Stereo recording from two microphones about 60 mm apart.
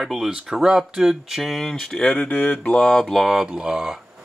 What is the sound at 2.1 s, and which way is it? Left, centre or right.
Speech, left.